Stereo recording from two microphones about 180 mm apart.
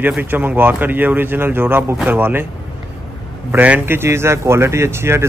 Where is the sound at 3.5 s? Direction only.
10° right (ahead or behind).